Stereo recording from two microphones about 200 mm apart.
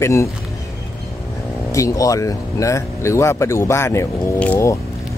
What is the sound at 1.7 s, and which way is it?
Speech, 15° left (ahead or behind).